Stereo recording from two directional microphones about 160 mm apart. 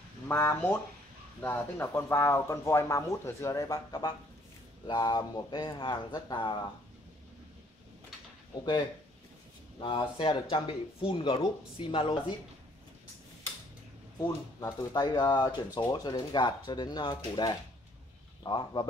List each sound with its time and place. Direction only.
0.3 s speech: 15° left (ahead or behind)
9.8 s speech: 30° left (ahead or behind)
14.2 s speech: 25° left (ahead or behind)